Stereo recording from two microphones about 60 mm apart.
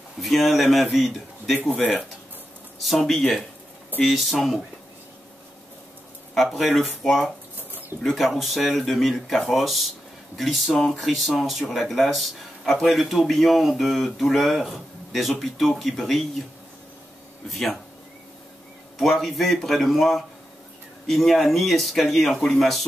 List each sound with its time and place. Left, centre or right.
0.2 s a man's voice: centre
2.8 s speech: centre
6.3 s speech: centre
7.5 s bird: right
8.0 s speech: centre
17.5 s speech: centre
18.9 s speech: centre